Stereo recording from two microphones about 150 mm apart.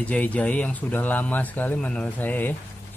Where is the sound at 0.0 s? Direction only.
10° left (ahead or behind).